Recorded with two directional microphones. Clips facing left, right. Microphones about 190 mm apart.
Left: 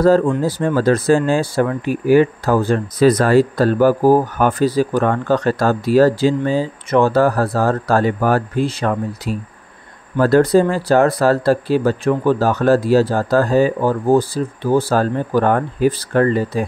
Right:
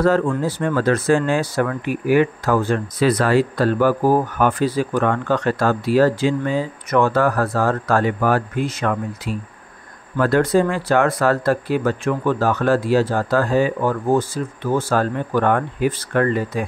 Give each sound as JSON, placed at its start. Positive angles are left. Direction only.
{"t": 0.0, "sound": "speech", "side_deg": 35}